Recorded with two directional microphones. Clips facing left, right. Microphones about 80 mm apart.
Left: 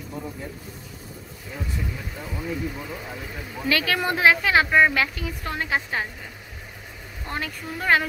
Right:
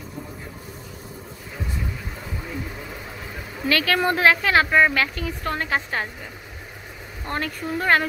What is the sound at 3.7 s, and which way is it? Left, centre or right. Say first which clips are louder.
Speech: right 3 dB; centre.